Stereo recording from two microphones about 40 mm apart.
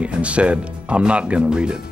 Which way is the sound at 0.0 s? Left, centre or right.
Right.